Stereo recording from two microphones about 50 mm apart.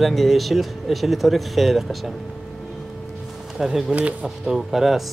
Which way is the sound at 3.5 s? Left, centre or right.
Centre.